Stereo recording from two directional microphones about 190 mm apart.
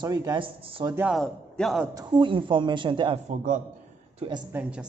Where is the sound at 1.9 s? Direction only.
20° right (ahead or behind).